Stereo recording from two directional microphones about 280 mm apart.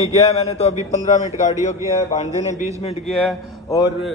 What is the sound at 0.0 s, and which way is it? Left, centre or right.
A man's voice, left.